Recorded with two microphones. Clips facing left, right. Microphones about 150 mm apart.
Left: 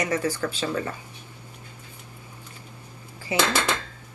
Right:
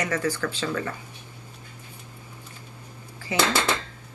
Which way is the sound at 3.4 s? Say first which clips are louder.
Right 1 dB; 10° right (ahead or behind).